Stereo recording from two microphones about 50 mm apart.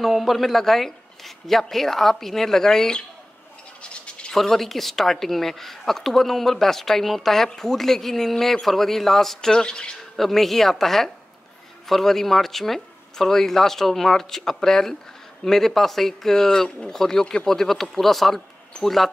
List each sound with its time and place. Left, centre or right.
0.0 s a woman's voice: centre
3.9 s toothbrush: left
4.3 s a woman's voice: centre
10.1 s a woman's voice: centre